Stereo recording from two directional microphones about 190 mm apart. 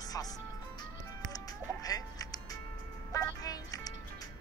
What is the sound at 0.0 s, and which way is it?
Music, 20° left (ahead or behind).